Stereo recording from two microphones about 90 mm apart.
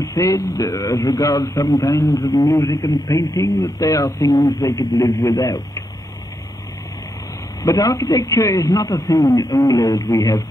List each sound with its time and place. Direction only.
0.0 s a man's voice: 40° left (ahead or behind)
7.6 s a man's voice: 40° left (ahead or behind)